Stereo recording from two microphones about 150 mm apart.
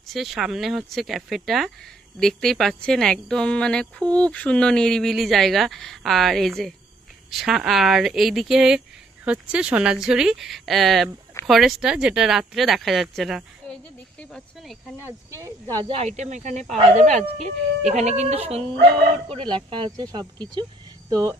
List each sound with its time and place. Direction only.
0.1 s a woman's voice: centre (ahead or behind)
15.0 s speech: 15° right (ahead or behind)
15.8 s speech: 45° right (ahead or behind); by 21.4 s 25° right (ahead or behind)